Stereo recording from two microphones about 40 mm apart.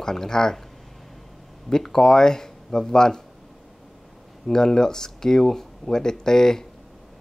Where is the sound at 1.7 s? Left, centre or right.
Centre.